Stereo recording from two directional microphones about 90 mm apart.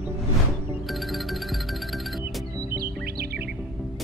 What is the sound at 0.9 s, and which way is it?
Music, centre (ahead or behind).